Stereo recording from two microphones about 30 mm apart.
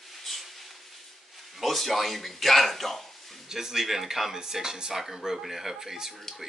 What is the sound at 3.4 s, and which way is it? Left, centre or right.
Speech, centre.